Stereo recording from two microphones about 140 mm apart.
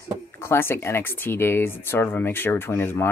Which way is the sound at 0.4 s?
15° left (ahead or behind).